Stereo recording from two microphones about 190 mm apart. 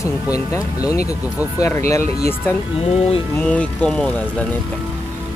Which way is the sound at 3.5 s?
5° left (ahead or behind).